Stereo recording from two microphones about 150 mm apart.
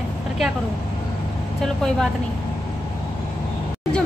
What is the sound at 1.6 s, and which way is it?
Speech, 5° left (ahead or behind).